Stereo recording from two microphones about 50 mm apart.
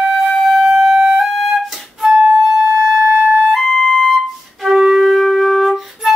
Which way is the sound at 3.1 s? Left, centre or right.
Right.